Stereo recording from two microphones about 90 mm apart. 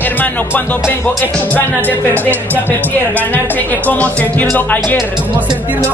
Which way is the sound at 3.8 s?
15° left (ahead or behind).